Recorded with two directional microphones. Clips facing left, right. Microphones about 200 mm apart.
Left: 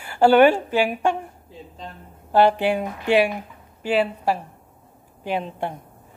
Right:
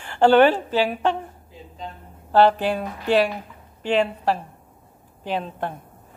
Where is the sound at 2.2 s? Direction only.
15° left (ahead or behind).